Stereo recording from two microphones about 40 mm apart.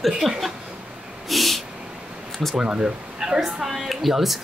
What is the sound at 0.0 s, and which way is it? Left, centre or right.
Speech, centre.